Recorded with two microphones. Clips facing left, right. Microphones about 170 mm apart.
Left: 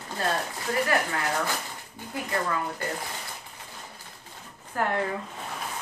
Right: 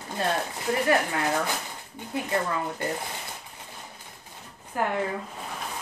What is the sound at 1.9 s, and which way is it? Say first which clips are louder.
Speech: right 3 dB; 25° right (ahead or behind).